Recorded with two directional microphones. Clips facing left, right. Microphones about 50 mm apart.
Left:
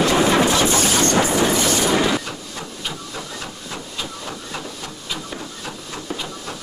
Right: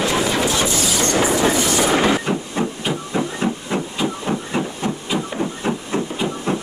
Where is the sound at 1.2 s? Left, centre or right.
Right.